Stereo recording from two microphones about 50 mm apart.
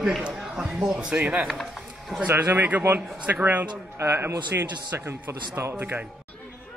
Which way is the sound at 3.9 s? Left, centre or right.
Right.